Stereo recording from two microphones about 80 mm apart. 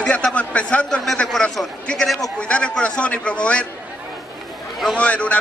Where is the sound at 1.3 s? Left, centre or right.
Centre.